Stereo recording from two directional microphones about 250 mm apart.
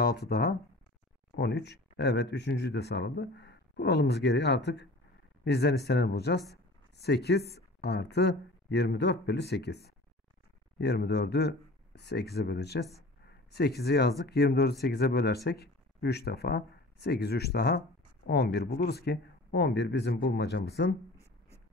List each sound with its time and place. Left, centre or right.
0.0 s speech: left